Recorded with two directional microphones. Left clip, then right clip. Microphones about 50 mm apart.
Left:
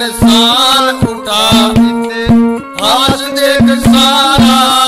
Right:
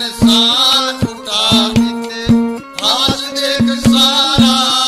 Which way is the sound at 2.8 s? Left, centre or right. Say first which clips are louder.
Left 4 dB; right.